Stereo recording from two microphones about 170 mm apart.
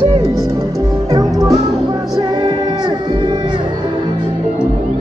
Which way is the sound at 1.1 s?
20° right (ahead or behind).